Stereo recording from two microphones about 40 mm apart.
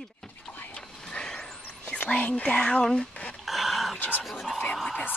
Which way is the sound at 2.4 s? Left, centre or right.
Left.